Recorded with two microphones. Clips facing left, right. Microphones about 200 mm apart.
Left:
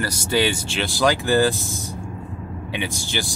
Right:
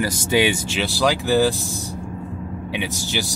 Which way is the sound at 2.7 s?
5° right (ahead or behind).